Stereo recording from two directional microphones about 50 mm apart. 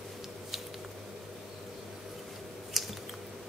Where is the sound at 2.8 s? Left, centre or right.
Centre.